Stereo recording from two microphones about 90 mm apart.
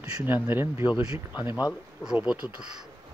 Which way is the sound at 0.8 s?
60° left (ahead or behind).